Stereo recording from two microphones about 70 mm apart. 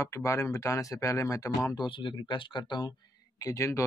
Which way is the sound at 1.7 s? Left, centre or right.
Left.